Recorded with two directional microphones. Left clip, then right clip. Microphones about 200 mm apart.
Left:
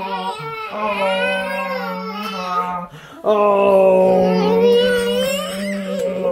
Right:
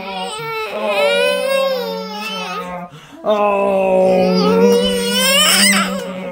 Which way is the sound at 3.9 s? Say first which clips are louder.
Right 1 dB; 15° right (ahead or behind).